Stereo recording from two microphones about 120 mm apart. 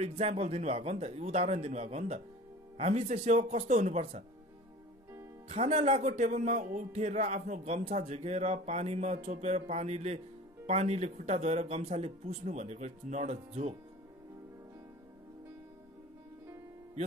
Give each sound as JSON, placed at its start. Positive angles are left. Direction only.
{"t": 0.0, "sound": "speech", "side_deg": -65}
{"t": 5.5, "sound": "speech", "side_deg": -60}